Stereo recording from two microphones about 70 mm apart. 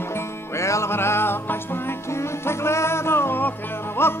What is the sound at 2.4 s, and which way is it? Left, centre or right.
Music, left.